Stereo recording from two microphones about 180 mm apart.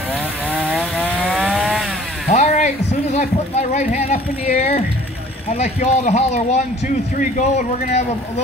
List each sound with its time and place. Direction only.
0.6 s chainsaw: 5° right (ahead or behind)
2.3 s a sound: 40° left (ahead or behind)
5.5 s speech: 40° left (ahead or behind)